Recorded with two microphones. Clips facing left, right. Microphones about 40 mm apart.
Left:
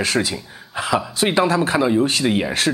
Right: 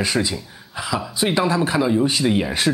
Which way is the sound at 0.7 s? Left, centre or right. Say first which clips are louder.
Left 4 dB; left.